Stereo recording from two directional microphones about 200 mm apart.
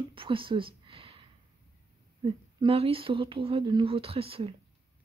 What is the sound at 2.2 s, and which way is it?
Speech, 30° right (ahead or behind).